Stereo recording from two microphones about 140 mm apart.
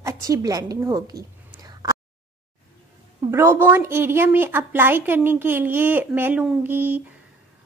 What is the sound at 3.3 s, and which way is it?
A woman's voice, 15° right (ahead or behind).